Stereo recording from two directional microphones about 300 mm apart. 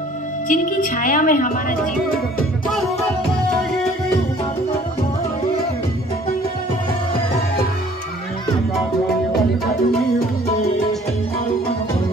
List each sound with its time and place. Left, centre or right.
0.5 s a woman's voice: left